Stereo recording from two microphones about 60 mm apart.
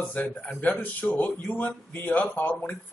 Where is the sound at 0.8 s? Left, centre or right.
Left.